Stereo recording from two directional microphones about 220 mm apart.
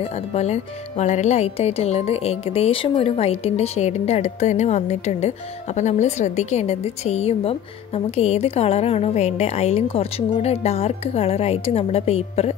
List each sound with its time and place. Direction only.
0.0 s a woman's voice: 30° left (ahead or behind)